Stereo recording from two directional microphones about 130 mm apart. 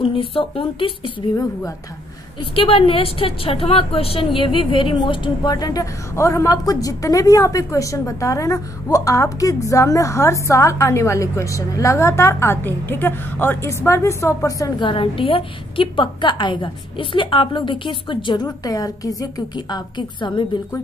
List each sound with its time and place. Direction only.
0.0 s speech: 45° left (ahead or behind)
2.5 s a woman's voice: 45° left (ahead or behind); by 14.9 s 25° left (ahead or behind)
14.9 s a woman's voice: 40° left (ahead or behind)